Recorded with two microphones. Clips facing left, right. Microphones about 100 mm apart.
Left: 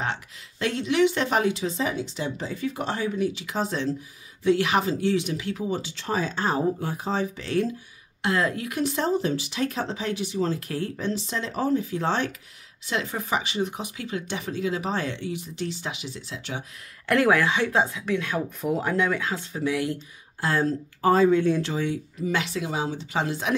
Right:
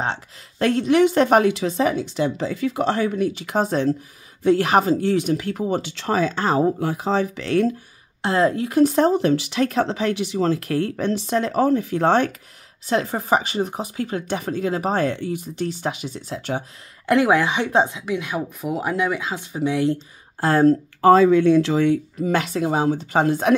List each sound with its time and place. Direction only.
0.6 s speech: 45° right (ahead or behind); by 3.1 s 90° right
3.2 s speech: 50° right (ahead or behind); by 7.7 s 70° right (ahead or behind)
8.2 s a woman's voice: 30° right (ahead or behind)
8.8 s speech: 55° right (ahead or behind)
12.8 s speech: 40° right (ahead or behind)
17.1 s speech: 20° right (ahead or behind)
20.3 s speech: 45° right (ahead or behind)
21.0 s speech: 90° right; by 23.5 s 50° right (ahead or behind)